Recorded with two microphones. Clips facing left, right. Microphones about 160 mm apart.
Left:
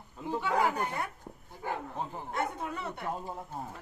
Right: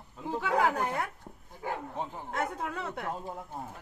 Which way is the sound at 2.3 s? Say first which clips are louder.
Even; 90° right.